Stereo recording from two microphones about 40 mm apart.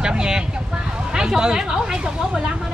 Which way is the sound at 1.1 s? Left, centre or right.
Centre.